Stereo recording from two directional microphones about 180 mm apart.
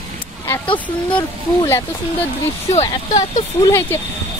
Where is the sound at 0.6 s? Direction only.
25° left (ahead or behind).